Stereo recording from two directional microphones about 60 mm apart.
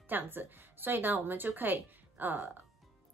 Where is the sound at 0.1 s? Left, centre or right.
Right.